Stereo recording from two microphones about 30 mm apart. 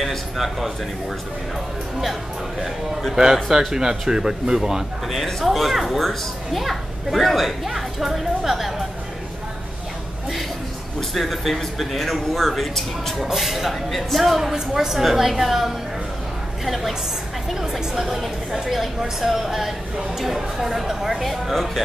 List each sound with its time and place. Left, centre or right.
3.4 s a man's voice: centre
5.0 s a child's voice: centre
11.1 s a child's voice: centre
13.3 s a child's voice: centre
14.5 s a woman's voice: centre
17.6 s a woman's voice: centre
21.2 s a child's voice: centre